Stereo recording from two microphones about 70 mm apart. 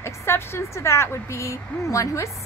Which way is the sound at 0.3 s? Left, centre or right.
Left.